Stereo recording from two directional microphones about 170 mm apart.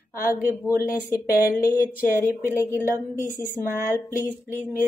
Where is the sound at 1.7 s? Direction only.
15° left (ahead or behind).